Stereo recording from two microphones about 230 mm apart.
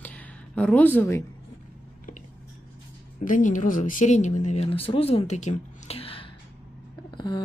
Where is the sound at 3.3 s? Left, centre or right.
Left.